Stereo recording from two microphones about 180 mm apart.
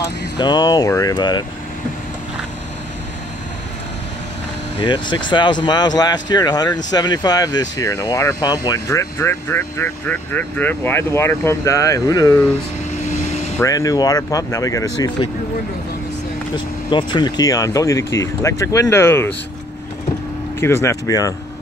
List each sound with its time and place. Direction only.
0.4 s speech: 25° left (ahead or behind)
4.7 s speech: 25° left (ahead or behind)
13.6 s speech: 15° left (ahead or behind)
16.5 s speech: 25° left (ahead or behind)
20.6 s speech: 15° left (ahead or behind)